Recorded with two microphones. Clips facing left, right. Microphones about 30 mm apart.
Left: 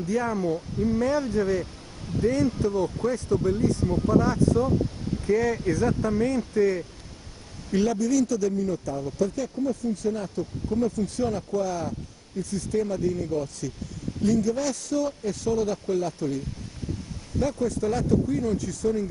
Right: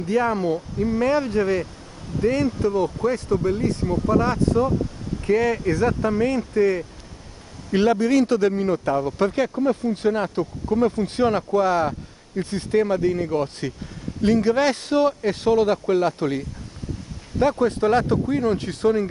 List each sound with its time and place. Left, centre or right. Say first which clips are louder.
0.0 s speech: right 5 dB; right
0.7 s speech: right 3 dB; right